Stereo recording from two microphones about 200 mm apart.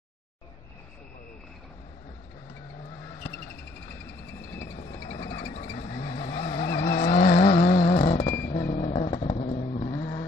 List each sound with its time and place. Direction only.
3.3 s a sound: 10° left (ahead or behind)
5.0 s a sound: 20° left (ahead or behind)
5.8 s vehicle: 30° left (ahead or behind)
6.6 s vehicle: 50° left (ahead or behind); by 8.2 s 30° left (ahead or behind)
8.2 s vehicle: 50° left (ahead or behind)
8.7 s vehicle: 35° left (ahead or behind)